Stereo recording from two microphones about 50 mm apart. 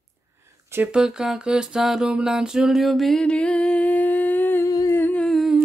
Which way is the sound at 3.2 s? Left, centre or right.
Left.